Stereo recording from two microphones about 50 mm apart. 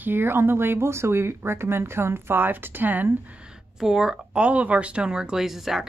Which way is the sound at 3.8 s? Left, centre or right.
Centre.